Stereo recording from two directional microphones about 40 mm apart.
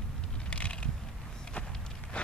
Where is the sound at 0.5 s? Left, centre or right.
Left.